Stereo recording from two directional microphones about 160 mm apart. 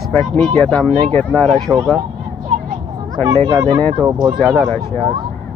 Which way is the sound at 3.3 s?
35° right (ahead or behind).